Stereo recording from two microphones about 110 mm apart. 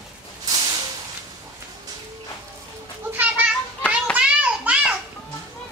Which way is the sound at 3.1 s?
15° right (ahead or behind).